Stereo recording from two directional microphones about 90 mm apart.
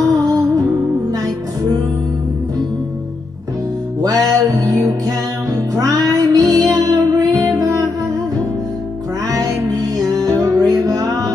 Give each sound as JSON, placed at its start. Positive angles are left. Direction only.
{"t": 0.1, "sound": "music", "side_deg": -40}
{"t": 4.0, "sound": "music", "side_deg": -45}
{"t": 10.2, "sound": "music", "side_deg": -35}